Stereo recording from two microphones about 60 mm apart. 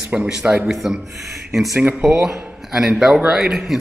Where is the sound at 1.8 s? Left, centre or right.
Right.